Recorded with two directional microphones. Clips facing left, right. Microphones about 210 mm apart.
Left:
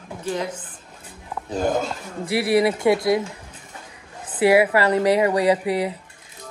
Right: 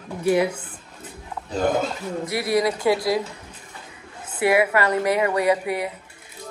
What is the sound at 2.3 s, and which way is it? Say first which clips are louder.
Speech: left 4 dB; 30° left (ahead or behind).